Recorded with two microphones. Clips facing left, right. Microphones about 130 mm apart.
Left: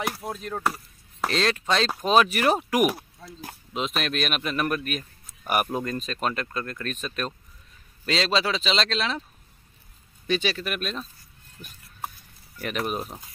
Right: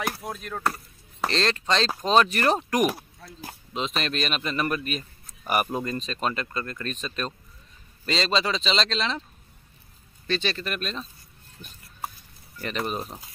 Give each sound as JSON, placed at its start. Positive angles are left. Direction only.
{"t": 0.2, "sound": "speech", "side_deg": 30}
{"t": 0.7, "sound": "speech", "side_deg": 5}
{"t": 10.2, "sound": "speech", "side_deg": 10}
{"t": 11.6, "sound": "a sound", "side_deg": 0}
{"t": 12.5, "sound": "speech", "side_deg": 5}